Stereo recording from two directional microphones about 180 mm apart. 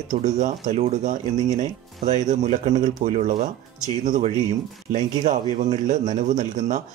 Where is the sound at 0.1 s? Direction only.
40° right (ahead or behind).